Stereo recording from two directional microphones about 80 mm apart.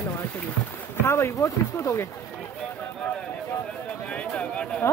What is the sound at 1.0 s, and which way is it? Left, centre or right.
Speech, left.